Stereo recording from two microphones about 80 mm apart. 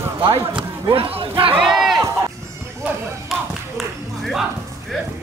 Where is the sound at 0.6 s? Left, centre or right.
Right.